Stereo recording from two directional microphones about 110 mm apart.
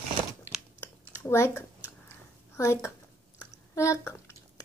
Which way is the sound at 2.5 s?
30° left (ahead or behind).